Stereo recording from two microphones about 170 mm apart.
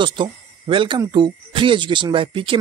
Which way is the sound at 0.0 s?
30° right (ahead or behind).